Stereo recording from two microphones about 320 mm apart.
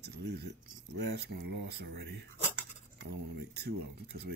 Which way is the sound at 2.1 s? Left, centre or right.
Right.